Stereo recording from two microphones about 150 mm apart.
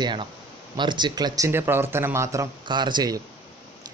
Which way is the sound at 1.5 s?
15° right (ahead or behind).